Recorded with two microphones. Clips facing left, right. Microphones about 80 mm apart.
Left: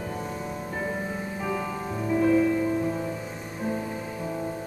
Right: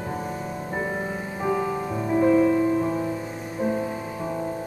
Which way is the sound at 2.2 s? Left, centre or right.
Centre.